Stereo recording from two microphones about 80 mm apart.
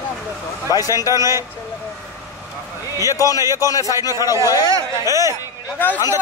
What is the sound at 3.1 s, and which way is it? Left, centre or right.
A man's voice, left.